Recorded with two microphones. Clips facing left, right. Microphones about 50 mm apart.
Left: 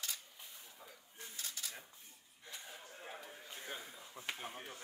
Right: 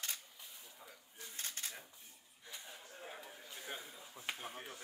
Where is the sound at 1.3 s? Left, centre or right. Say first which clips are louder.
Right 1 dB; right.